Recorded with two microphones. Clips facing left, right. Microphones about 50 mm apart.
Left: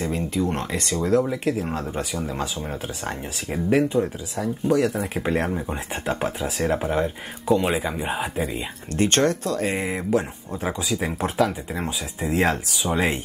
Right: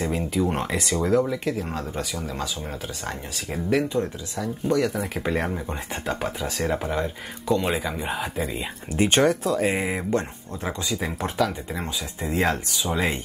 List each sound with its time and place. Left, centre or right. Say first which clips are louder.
0.0 s speech: even; centre
1.2 s speech: left 2 dB; centre
1.8 s speech: left 2 dB; left
3.1 s speech: left 2 dB; centre
4.6 s speech: left 2 dB; centre
8.9 s speech: right 1 dB; centre
10.6 s speech: left 2 dB; centre
11.2 s speech: left 2 dB; left